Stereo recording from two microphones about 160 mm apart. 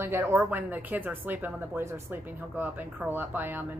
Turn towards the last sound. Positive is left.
turn(degrees=-10)  # may be behind; listen again after turning